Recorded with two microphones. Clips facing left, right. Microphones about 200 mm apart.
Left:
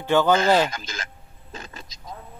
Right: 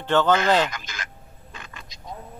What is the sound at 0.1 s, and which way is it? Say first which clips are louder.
Speech: left 1 dB; 10° left (ahead or behind).